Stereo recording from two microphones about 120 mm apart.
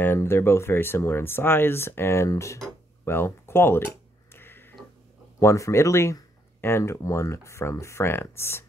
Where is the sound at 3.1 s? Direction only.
20° left (ahead or behind).